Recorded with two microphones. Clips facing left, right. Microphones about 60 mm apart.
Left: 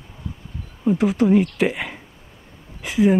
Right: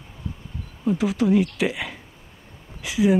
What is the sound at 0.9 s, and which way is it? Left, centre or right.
Speech, centre.